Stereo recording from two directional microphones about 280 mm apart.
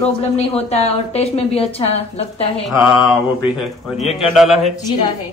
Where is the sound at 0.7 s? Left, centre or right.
Left.